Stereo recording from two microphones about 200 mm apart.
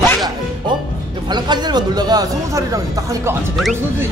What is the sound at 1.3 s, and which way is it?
Speech, 20° right (ahead or behind).